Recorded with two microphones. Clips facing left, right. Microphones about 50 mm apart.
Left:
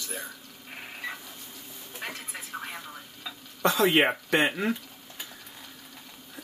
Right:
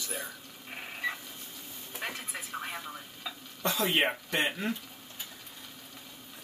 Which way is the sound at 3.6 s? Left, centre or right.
Left.